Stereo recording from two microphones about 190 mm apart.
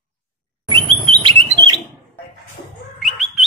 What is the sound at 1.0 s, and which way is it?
Bird, 25° right (ahead or behind).